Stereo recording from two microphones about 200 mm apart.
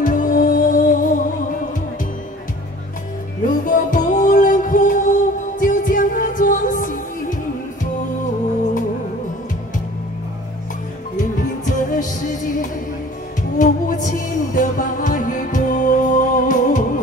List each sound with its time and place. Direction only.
0.0 s music: 45° left (ahead or behind)
3.4 s music: 40° left (ahead or behind)
11.1 s music: 40° left (ahead or behind)